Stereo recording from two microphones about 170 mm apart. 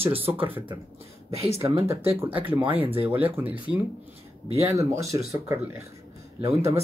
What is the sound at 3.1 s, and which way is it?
Speech, 10° right (ahead or behind).